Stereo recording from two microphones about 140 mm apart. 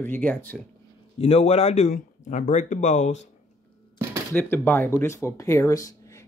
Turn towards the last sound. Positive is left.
turn(degrees=25)  # may be behind; listen again after turning